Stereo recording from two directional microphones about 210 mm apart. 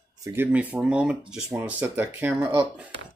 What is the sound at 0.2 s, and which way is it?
Speech, 10° right (ahead or behind).